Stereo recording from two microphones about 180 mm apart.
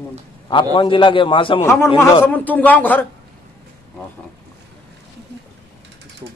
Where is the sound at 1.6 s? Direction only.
15° left (ahead or behind).